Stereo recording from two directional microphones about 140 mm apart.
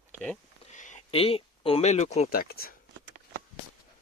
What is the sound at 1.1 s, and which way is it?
Speech, 40° left (ahead or behind).